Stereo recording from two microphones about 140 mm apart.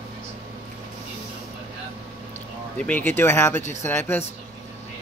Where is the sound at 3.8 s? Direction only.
15° left (ahead or behind).